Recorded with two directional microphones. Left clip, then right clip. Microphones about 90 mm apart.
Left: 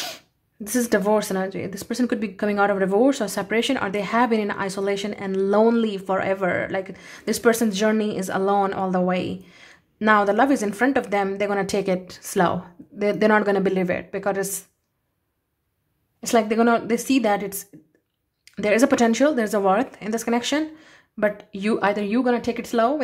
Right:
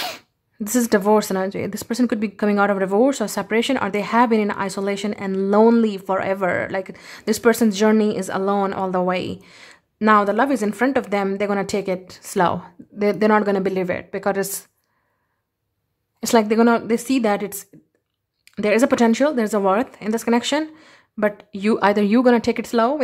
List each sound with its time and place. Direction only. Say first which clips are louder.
0.7 s speech: right 3 dB; 50° right (ahead or behind)
1.9 s speech: right 2 dB; 40° right (ahead or behind)
9.4 s a sound: right 3 dB; 55° right (ahead or behind)
9.9 s speech: right 2 dB; 35° right (ahead or behind)
16.3 s speech: right 2 dB; 40° right (ahead or behind)
21.7 s speech: right 5 dB; 65° right (ahead or behind)
22.5 s speech: right 2 dB; 40° right (ahead or behind)